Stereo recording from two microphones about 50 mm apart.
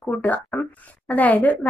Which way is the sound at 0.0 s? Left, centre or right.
Left.